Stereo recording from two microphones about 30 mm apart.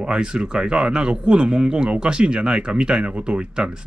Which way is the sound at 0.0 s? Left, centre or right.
Right.